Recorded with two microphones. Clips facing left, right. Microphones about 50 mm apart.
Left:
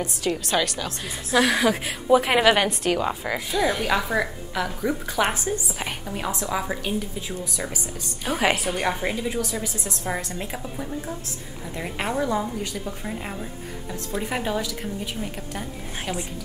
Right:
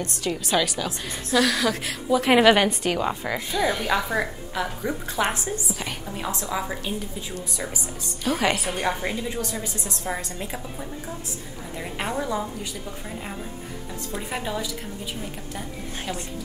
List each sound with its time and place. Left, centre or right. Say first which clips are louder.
0.0 s a woman's voice: left 2 dB; centre
1.3 s a woman's voice: left 2 dB; centre
2.2 s a woman's voice: right 2 dB; centre
5.5 s a woman's voice: left 2 dB; centre